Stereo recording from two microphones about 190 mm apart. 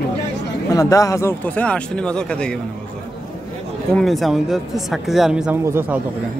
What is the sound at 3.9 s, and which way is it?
A man's voice, centre (ahead or behind).